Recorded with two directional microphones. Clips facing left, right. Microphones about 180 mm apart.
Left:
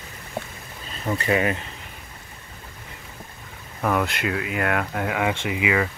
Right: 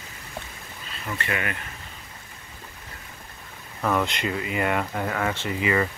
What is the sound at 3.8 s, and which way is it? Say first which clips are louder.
Speech: left 1 dB; 5° left (ahead or behind).